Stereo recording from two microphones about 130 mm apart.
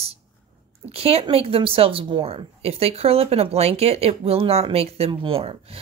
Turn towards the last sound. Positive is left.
turn(degrees=-45)  # may be behind; listen again after turning